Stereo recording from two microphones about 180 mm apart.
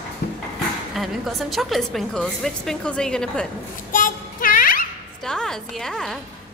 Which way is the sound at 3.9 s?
50° left (ahead or behind).